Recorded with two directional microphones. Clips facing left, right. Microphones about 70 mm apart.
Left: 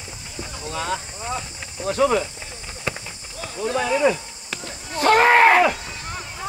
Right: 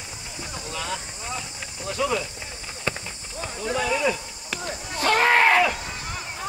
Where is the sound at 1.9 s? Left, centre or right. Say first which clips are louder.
Left 6 dB; left.